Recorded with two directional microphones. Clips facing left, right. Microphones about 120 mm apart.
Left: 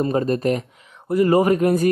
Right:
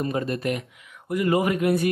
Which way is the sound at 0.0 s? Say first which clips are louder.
Left 6 dB; 35° left (ahead or behind).